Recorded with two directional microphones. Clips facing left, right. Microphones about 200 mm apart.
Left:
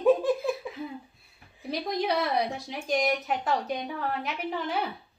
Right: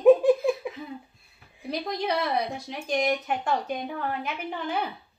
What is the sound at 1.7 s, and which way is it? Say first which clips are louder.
Speech: even; centre (ahead or behind).